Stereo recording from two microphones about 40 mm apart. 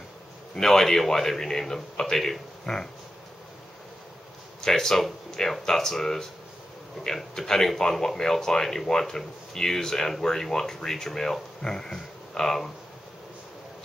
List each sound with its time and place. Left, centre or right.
0.6 s speech: centre
2.6 s a sound: centre
4.6 s speech: centre